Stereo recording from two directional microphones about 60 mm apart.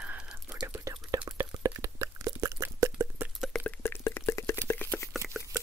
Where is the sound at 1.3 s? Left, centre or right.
Right.